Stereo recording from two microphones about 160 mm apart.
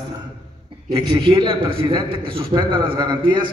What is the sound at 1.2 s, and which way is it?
A man's voice, 30° right (ahead or behind).